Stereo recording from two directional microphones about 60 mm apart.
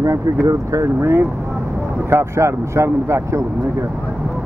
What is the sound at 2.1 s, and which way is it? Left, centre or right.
Speech, right.